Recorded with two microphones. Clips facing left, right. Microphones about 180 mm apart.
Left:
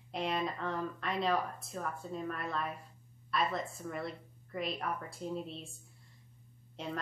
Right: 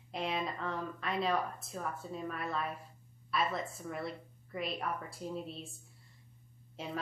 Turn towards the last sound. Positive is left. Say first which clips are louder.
# left 2 dB
turn(degrees=-5)  # may be behind; listen again after turning